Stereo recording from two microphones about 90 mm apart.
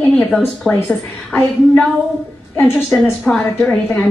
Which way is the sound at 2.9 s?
15° left (ahead or behind).